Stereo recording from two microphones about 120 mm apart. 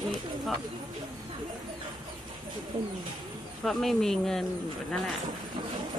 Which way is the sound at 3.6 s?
5° left (ahead or behind).